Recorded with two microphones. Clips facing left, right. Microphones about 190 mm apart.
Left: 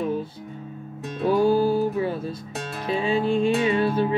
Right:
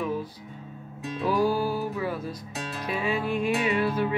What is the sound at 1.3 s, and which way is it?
Music, 25° left (ahead or behind).